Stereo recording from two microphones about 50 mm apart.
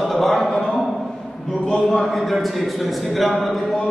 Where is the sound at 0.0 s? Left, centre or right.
Centre.